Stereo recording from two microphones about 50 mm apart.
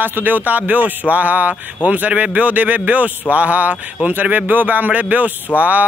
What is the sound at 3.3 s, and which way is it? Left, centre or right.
Music, right.